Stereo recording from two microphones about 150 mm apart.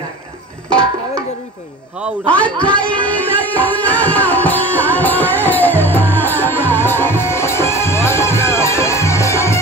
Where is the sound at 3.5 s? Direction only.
10° left (ahead or behind).